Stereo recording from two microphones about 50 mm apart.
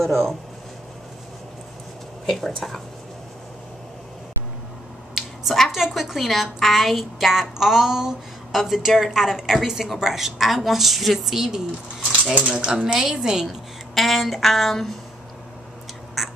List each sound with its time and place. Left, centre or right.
0.0 s a woman's voice: centre
2.2 s a woman's voice: centre
5.1 s a woman's voice: centre
12.4 s speech: right
12.8 s a woman's voice: centre
13.9 s a woman's voice: centre